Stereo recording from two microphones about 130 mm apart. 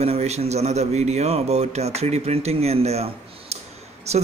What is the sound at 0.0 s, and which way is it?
Speech, 55° right (ahead or behind).